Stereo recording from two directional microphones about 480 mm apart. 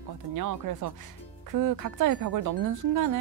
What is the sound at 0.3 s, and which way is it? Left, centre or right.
Speech, right.